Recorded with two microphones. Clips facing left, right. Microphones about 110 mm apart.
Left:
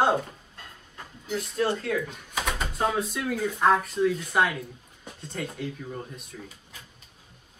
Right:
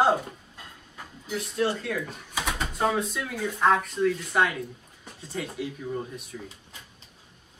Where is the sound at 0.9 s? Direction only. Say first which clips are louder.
Left 2 dB; centre (ahead or behind).